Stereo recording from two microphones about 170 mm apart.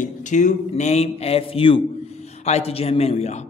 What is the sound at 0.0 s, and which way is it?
A man's voice, 45° left (ahead or behind).